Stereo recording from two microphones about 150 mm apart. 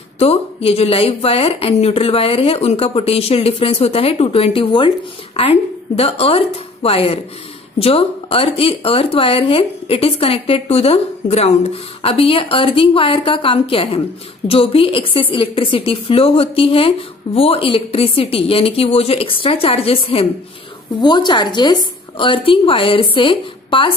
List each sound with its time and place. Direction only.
0.2 s speech: 40° left (ahead or behind)